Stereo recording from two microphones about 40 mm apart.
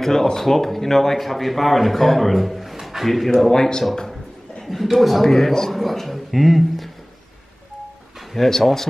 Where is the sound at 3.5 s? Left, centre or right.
Centre.